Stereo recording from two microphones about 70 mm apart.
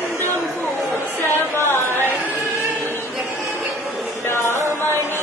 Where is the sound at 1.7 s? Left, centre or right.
Left.